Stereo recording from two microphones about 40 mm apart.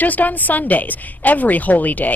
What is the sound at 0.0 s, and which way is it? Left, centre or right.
A woman's voice, left.